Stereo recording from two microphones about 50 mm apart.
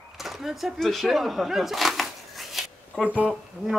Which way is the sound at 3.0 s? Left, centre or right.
Right.